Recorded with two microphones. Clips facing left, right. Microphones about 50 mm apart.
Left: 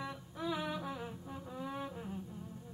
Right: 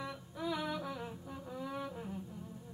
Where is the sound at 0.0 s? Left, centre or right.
Centre.